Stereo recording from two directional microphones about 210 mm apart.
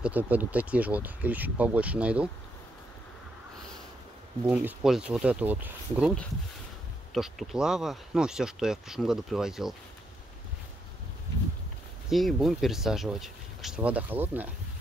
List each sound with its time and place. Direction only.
0.0 s speech: 10° right (ahead or behind)
4.5 s speech: 5° right (ahead or behind)
7.2 s speech: centre (ahead or behind)
12.1 s speech: centre (ahead or behind)